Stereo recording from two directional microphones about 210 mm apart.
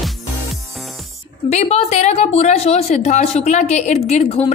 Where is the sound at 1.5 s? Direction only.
30° left (ahead or behind).